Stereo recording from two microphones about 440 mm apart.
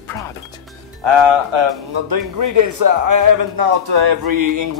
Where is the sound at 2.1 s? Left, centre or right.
Right.